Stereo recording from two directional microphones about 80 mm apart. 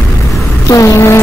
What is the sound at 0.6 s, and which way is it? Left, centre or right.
Vehicle, left.